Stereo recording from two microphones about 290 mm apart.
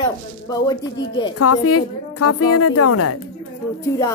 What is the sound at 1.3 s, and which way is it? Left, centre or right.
A woman's voice, left.